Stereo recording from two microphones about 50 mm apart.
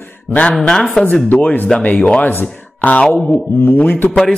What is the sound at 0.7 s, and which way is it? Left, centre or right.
Speech, centre.